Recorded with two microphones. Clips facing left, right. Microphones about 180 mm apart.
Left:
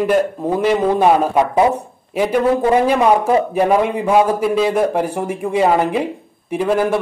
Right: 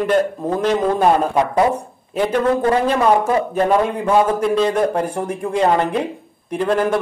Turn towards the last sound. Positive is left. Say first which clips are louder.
# left 1 dB
turn(degrees=5)  # may be behind; listen again after turning